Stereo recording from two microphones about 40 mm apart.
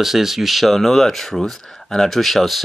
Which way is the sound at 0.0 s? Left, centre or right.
Centre.